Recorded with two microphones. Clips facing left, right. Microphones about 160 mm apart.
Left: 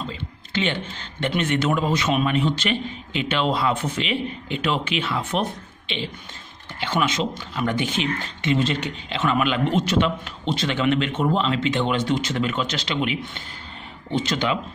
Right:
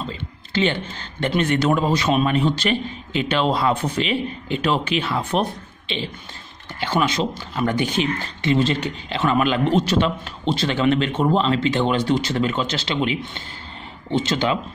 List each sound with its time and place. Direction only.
0.5 s speech: 35° right (ahead or behind)